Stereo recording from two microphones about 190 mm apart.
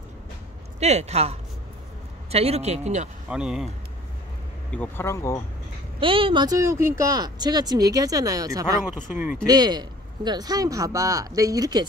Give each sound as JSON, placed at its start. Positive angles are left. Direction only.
{"t": 0.7, "sound": "speech", "side_deg": -35}
{"t": 3.3, "sound": "speech", "side_deg": -5}
{"t": 4.6, "sound": "speech", "side_deg": 10}
{"t": 5.9, "sound": "speech", "side_deg": -25}